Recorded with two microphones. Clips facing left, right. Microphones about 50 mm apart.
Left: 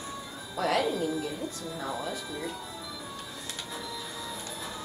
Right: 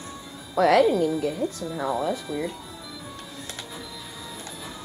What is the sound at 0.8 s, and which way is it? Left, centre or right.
Speech, centre.